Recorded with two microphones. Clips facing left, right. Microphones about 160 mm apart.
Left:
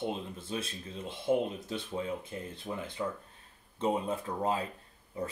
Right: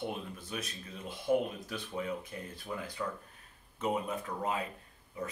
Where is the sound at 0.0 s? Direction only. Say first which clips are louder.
Left 3 dB; 25° left (ahead or behind).